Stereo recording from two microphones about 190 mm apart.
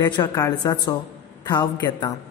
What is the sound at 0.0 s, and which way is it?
Speech, 25° left (ahead or behind).